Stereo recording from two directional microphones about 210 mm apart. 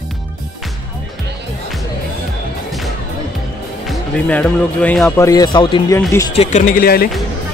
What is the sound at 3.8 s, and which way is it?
Speech, 5° left (ahead or behind).